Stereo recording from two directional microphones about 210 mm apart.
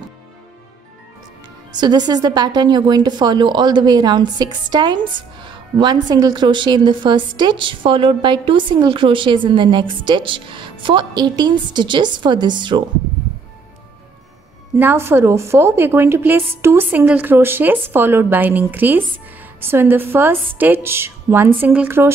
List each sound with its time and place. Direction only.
1.7 s a woman's voice: 20° right (ahead or behind)
14.8 s a woman's voice: 10° right (ahead or behind)